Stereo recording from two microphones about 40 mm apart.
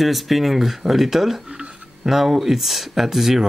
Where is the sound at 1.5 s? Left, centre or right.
Right.